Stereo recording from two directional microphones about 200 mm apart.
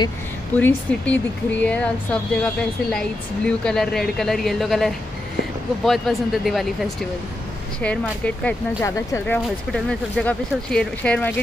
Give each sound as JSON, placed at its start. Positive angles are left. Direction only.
{"t": 0.6, "sound": "speech", "side_deg": 10}